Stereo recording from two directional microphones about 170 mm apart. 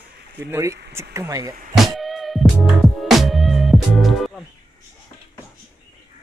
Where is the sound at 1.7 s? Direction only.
Centre (ahead or behind).